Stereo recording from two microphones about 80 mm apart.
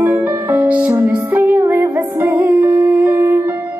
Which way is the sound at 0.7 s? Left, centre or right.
Centre.